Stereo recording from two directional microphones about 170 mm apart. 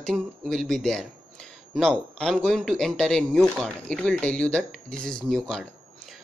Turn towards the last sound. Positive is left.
turn(degrees=5)  # may be behind; listen again after turning